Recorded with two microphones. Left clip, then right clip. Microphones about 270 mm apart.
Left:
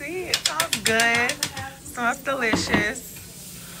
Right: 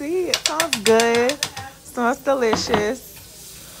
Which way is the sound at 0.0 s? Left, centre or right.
Right.